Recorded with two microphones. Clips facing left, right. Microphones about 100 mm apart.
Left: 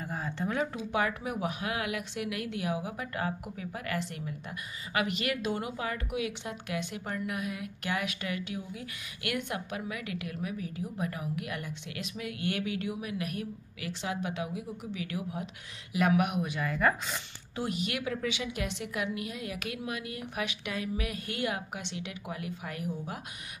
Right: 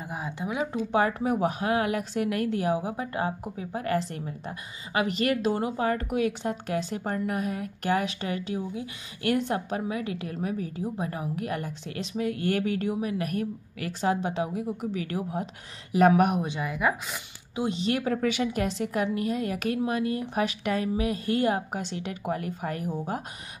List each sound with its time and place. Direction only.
0.0 s a sound: 15° right (ahead or behind)
0.9 s a woman's voice: 35° right (ahead or behind)
16.4 s speech: 20° right (ahead or behind)
17.6 s a woman's voice: 25° right (ahead or behind)